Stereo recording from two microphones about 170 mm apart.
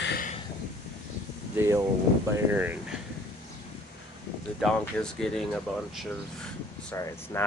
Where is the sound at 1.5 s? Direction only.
15° right (ahead or behind).